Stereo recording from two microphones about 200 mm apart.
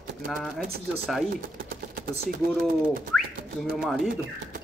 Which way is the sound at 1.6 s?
45° right (ahead or behind).